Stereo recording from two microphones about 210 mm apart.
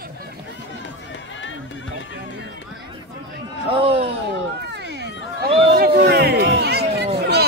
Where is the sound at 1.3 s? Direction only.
65° left (ahead or behind).